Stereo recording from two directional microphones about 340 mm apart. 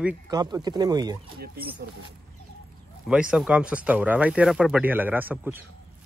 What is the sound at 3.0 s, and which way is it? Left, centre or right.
Speech, centre.